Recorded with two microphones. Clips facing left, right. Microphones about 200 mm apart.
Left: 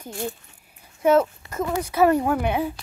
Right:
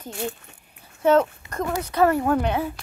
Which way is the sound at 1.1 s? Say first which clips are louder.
Even; 10° left (ahead or behind).